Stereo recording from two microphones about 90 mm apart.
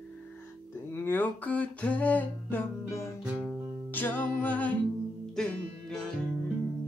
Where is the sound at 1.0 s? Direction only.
20° left (ahead or behind).